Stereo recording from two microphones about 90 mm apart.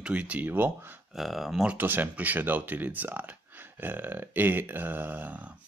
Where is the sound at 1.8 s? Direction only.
20° right (ahead or behind).